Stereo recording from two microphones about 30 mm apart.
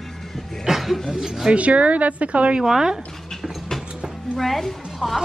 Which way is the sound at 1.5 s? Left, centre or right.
Right.